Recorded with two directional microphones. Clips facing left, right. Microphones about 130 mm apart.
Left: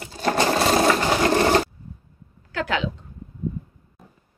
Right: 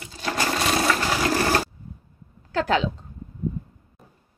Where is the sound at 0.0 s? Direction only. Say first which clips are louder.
Left 6 dB; 40° left (ahead or behind).